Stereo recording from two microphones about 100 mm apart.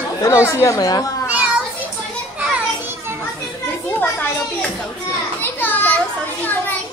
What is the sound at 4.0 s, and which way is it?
Children playing, 15° left (ahead or behind).